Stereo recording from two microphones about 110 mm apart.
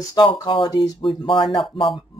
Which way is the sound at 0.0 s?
40° left (ahead or behind).